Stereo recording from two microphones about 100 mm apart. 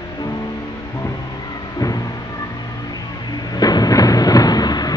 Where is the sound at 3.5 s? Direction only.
40° left (ahead or behind).